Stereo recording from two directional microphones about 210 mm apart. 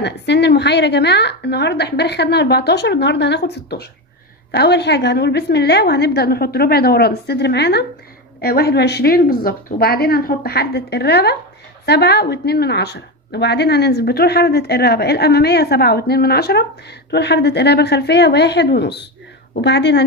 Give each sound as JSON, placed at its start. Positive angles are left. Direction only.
{"t": 0.0, "sound": "a woman's voice", "side_deg": 55}